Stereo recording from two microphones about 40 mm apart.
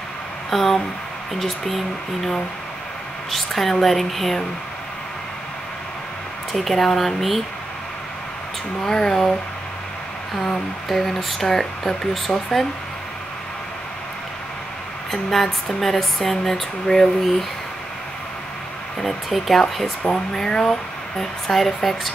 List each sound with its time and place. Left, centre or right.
0.5 s speech: centre
3.3 s speech: centre
6.5 s speech: centre
8.8 s speech: centre
10.9 s speech: centre
15.0 s speech: centre
17.2 s speech: centre
19.2 s speech: centre
20.1 s speech: centre